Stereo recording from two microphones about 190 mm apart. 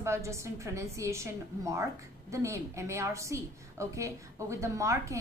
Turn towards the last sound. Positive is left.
turn(degrees=-15)  # may be behind; listen again after turning